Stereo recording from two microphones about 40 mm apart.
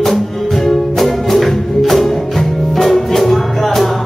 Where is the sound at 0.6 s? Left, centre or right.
Centre.